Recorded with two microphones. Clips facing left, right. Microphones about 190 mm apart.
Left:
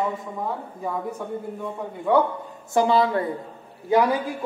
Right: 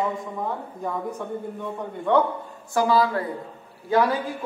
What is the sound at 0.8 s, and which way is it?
A man's voice, 5° left (ahead or behind).